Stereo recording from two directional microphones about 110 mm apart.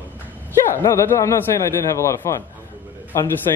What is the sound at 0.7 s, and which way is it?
Speech, 25° left (ahead or behind).